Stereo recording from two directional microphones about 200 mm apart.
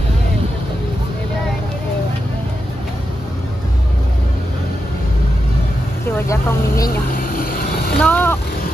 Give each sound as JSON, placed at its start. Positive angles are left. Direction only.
{"t": 6.0, "sound": "vehicle", "side_deg": 10}
{"t": 7.2, "sound": "vehicle", "side_deg": 45}
{"t": 8.0, "sound": "a sound", "side_deg": 10}